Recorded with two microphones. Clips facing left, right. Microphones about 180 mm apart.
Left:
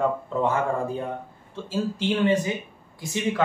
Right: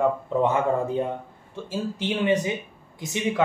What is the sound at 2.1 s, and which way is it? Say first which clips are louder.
Speech: even; 20° right (ahead or behind).